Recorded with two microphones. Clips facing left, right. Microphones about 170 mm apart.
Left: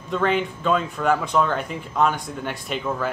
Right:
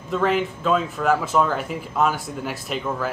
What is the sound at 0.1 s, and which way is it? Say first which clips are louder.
Speech: right 1 dB; centre (ahead or behind).